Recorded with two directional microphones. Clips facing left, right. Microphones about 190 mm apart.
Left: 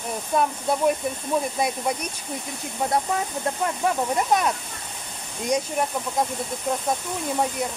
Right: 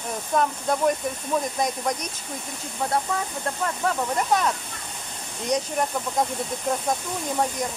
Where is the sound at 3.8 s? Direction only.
15° left (ahead or behind).